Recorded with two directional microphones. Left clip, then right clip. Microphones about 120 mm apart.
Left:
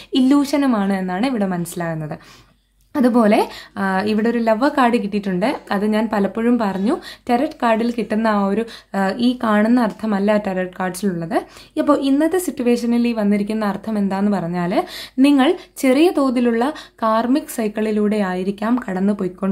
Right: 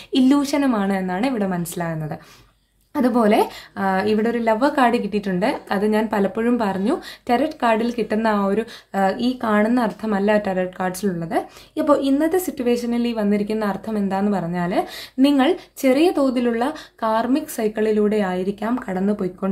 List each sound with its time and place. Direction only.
0.1 s a woman's voice: 20° left (ahead or behind)